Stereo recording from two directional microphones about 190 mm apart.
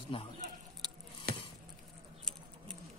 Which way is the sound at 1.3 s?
55° right (ahead or behind).